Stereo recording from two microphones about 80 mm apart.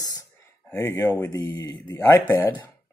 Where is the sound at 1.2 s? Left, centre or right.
Left.